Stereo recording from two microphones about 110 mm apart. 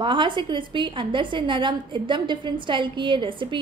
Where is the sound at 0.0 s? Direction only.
45° right (ahead or behind).